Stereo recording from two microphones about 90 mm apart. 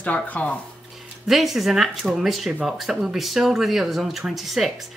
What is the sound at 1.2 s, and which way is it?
Speech, centre (ahead or behind).